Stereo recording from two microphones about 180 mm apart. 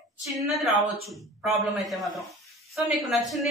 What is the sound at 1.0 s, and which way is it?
A woman's voice, centre (ahead or behind).